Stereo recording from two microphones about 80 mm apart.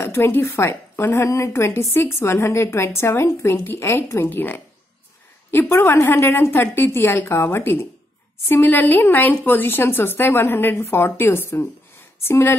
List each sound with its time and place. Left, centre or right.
0.0 s a woman's voice: left